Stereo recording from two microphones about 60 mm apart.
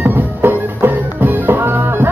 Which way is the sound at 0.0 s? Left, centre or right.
Right.